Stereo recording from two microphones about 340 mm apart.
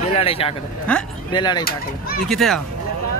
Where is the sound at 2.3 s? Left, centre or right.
Centre.